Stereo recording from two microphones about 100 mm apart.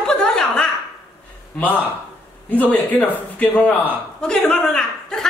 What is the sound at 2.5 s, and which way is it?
A man's voice, 15° left (ahead or behind).